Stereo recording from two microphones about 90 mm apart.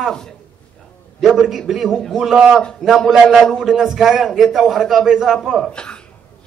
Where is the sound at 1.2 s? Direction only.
5° right (ahead or behind).